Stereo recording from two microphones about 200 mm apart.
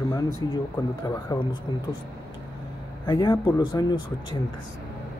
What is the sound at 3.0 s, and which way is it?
Speech, 25° left (ahead or behind).